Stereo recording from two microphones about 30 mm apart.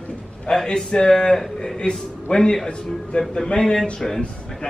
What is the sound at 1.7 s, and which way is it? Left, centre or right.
Speech, left.